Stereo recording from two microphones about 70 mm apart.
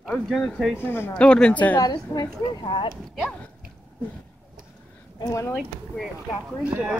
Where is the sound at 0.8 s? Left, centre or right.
Left.